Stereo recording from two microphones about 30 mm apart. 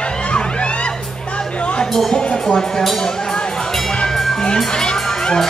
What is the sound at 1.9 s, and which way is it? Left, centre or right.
Speech, centre.